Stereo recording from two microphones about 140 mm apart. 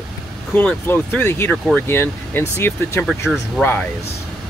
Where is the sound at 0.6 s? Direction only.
10° left (ahead or behind).